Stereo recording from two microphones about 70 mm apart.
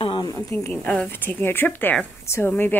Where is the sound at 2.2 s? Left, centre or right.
Left.